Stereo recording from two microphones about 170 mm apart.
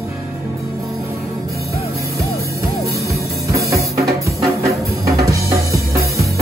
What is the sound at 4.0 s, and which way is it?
Music, 20° right (ahead or behind).